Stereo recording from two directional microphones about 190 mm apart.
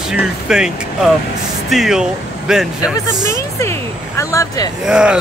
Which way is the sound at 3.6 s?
15° left (ahead or behind).